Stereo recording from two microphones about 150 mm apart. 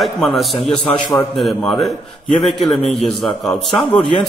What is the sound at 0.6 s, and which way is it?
Speech, 40° left (ahead or behind).